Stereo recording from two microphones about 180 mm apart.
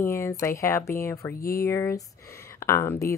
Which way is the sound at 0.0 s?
15° left (ahead or behind).